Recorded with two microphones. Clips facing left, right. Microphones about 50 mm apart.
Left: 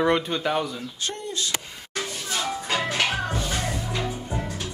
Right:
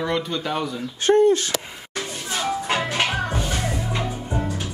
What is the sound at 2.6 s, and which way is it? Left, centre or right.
Music, right.